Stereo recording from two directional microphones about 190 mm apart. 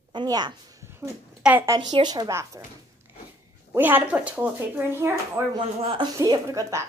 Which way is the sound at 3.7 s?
10° right (ahead or behind).